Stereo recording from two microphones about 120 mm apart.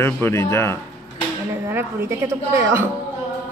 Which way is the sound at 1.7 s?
20° right (ahead or behind).